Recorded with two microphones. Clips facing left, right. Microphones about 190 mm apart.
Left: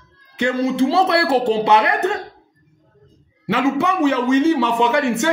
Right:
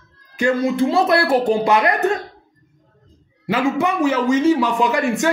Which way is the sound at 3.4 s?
25° left (ahead or behind).